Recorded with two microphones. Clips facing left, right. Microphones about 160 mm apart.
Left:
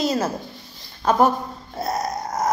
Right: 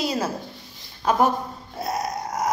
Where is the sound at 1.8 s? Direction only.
35° left (ahead or behind).